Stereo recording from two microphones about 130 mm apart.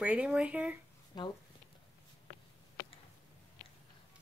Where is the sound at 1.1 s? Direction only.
35° left (ahead or behind).